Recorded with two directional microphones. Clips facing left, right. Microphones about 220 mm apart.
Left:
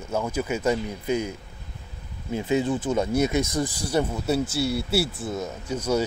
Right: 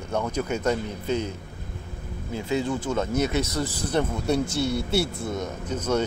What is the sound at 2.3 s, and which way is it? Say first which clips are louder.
Speech: left 3 dB; 20° left (ahead or behind).